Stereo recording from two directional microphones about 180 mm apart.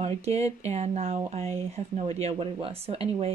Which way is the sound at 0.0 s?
35° right (ahead or behind).